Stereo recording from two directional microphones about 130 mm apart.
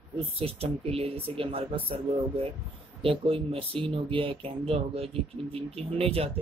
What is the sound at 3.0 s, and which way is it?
A man's voice, 45° right (ahead or behind).